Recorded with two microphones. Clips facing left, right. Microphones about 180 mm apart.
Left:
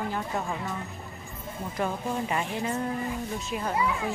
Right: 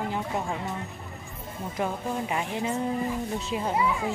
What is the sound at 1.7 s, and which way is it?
Speech, 10° right (ahead or behind).